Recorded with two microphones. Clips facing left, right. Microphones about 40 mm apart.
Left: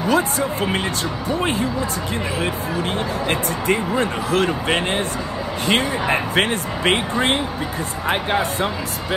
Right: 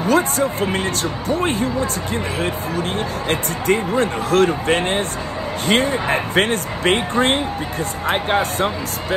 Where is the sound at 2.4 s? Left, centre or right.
Left.